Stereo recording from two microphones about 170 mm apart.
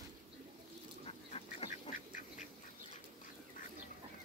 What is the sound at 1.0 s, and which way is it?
Duck, 35° left (ahead or behind).